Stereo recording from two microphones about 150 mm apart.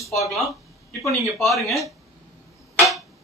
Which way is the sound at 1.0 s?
Centre (ahead or behind).